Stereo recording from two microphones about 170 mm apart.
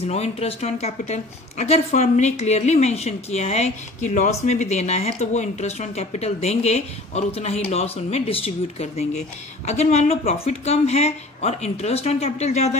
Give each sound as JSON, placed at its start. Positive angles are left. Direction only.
{"t": 0.0, "sound": "a woman's voice", "side_deg": 40}